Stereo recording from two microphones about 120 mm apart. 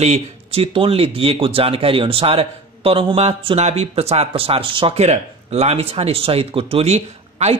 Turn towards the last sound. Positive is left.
turn(degrees=-65)  # may be behind; listen again after turning